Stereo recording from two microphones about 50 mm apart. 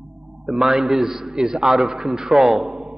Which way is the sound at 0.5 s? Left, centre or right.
Centre.